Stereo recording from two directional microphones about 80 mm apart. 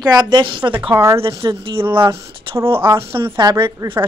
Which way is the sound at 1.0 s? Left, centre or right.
Right.